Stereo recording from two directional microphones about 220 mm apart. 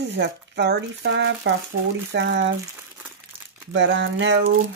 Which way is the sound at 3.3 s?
25° right (ahead or behind).